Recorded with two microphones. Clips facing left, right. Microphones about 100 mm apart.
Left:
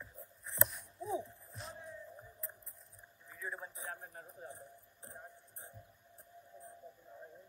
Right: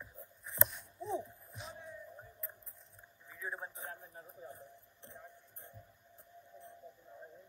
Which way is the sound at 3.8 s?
65° left (ahead or behind).